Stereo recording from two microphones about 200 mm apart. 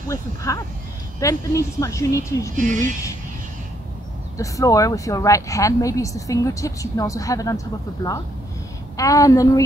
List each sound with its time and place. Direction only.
0.1 s speech: 15° left (ahead or behind)
2.5 s speech: 40° right (ahead or behind)
2.8 s speech: 15° left (ahead or behind)
4.4 s speech: 15° left (ahead or behind)